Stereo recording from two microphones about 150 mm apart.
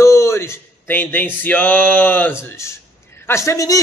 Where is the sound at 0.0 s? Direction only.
20° left (ahead or behind).